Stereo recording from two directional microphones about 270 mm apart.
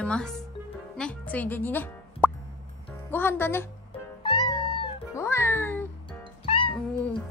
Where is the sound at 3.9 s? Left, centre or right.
Centre.